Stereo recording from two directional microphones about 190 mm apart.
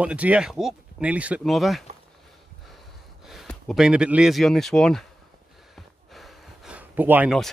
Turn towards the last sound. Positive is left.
turn(degrees=-5)  # may be behind; listen again after turning